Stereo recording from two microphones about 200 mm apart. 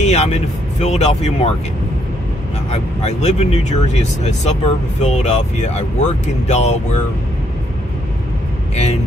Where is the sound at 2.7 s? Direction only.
35° left (ahead or behind).